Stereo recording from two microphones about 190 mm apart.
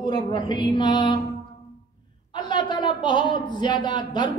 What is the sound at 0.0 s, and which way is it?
Speech, 25° left (ahead or behind).